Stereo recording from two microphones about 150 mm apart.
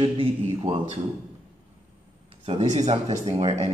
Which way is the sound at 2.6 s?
50° right (ahead or behind).